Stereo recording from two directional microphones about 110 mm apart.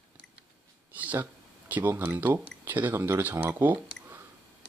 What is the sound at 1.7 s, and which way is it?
Speech, 20° right (ahead or behind).